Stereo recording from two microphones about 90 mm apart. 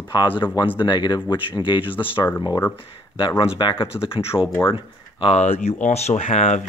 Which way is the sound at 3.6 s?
60° left (ahead or behind).